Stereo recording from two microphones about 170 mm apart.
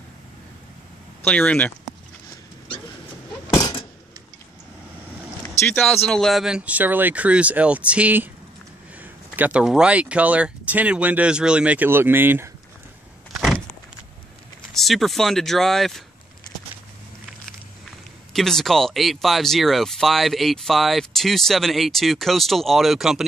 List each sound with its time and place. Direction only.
1.2 s speech: 10° left (ahead or behind)
3.4 s a sound: 25° left (ahead or behind)
5.5 s speech: 10° left (ahead or behind); by 12.4 s 10° right (ahead or behind)
13.4 s vehicle: centre (ahead or behind)
14.7 s speech: centre (ahead or behind)
18.3 s speech: centre (ahead or behind)